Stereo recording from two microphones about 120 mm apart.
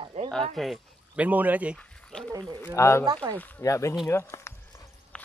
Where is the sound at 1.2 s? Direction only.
15° right (ahead or behind).